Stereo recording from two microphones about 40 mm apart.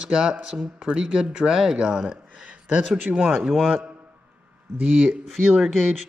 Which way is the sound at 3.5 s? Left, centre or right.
Centre.